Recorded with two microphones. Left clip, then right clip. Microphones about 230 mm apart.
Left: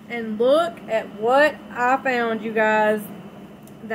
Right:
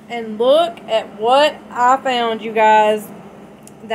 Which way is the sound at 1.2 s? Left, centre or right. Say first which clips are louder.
Right 4 dB; right.